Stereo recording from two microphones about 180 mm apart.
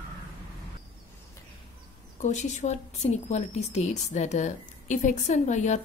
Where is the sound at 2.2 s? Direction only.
40° left (ahead or behind).